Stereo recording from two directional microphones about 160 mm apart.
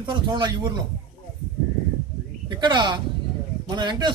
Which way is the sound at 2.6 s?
30° right (ahead or behind).